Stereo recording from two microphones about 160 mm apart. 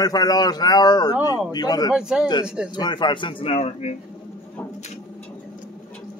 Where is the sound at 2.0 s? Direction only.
5° right (ahead or behind).